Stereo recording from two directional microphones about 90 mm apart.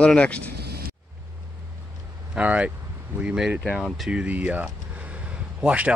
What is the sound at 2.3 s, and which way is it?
Speech, 15° right (ahead or behind).